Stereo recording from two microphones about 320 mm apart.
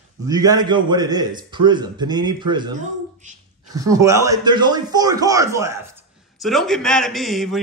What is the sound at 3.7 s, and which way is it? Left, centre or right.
A man's voice, centre.